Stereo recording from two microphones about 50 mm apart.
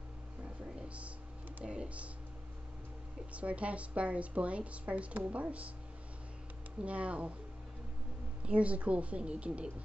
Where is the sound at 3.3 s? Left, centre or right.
Right.